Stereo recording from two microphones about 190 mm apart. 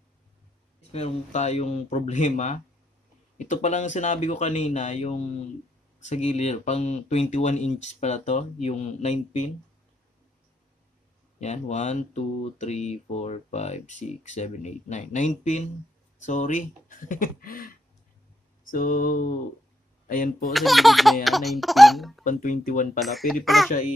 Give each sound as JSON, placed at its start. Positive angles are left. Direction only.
{"t": 0.7, "sound": "speech", "side_deg": 35}
{"t": 11.3, "sound": "speech", "side_deg": 35}
{"t": 17.1, "sound": "mantra", "side_deg": 50}
{"t": 18.7, "sound": "mantra", "side_deg": 45}
{"t": 20.5, "sound": "speech", "side_deg": 0}
{"t": 22.2, "sound": "mantra", "side_deg": 40}
{"t": 22.9, "sound": "speech", "side_deg": 0}